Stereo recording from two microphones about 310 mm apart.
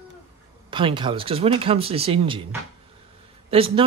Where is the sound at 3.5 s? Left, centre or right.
Centre.